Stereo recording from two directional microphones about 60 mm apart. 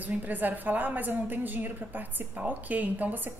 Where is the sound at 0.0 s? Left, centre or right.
Right.